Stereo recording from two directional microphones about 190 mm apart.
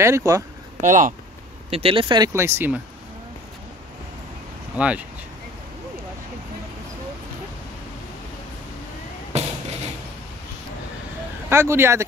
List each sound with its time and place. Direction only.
0.0 s speech: 15° right (ahead or behind)
0.7 s speech: 40° right (ahead or behind)
1.7 s speech: 30° right (ahead or behind); by 2.8 s 10° right (ahead or behind)
4.7 s speech: 5° right (ahead or behind)
9.3 s fireworks: 35° right (ahead or behind)
11.4 s speech: 15° right (ahead or behind)